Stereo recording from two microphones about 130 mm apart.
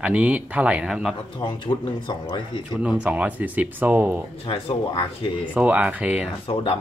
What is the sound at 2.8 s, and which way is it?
Speech, 10° right (ahead or behind).